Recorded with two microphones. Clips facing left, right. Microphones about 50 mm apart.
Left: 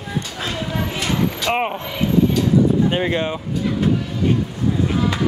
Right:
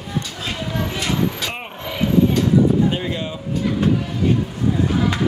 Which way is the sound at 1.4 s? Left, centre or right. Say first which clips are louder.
Left 9 dB; left.